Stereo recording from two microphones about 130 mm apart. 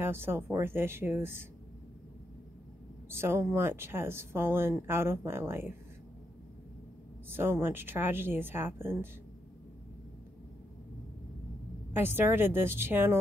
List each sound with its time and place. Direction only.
0.0 s speech: 20° right (ahead or behind)
3.1 s speech: 20° right (ahead or behind)
7.2 s speech: 15° right (ahead or behind)
11.9 s speech: 15° right (ahead or behind)